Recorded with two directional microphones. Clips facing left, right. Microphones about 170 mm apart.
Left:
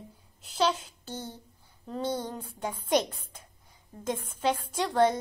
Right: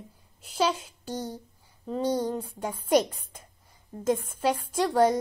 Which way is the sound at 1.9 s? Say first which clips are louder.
Right 5 dB; 10° right (ahead or behind).